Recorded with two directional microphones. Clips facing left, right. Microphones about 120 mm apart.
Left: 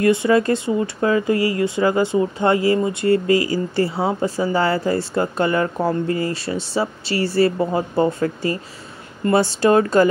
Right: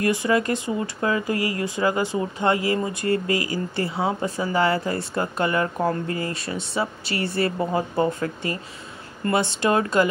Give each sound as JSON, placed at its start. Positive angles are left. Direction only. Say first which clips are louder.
{"t": 0.0, "sound": "speech", "louder": "left 5 dB", "side_deg": 25}